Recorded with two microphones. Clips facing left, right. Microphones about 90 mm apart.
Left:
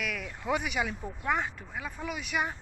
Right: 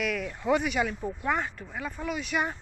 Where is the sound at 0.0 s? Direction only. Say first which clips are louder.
Right 5 dB; 5° left (ahead or behind).